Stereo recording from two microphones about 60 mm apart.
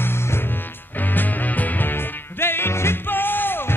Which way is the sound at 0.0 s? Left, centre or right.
Left.